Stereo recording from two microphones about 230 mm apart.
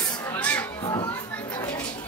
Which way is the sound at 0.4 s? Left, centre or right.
Centre.